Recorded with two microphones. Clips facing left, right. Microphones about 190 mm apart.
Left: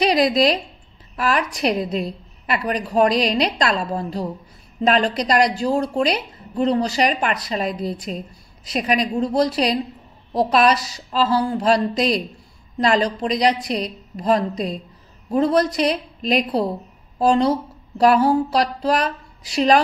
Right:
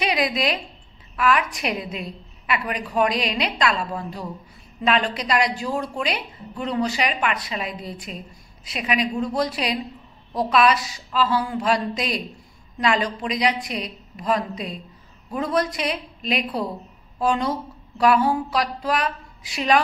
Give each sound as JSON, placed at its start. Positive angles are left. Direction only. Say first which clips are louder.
{"t": 0.0, "sound": "a woman's voice", "louder": "left 7 dB", "side_deg": 35}